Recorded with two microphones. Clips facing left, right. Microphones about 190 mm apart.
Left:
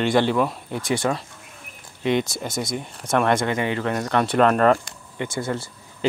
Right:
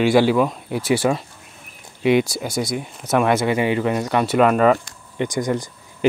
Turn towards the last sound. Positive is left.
turn(degrees=-15)  # may be behind; listen again after turning